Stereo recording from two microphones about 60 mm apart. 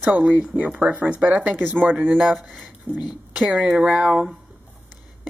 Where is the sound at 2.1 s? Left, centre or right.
Centre.